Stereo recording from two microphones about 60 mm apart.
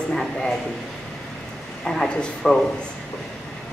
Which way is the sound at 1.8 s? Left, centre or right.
Centre.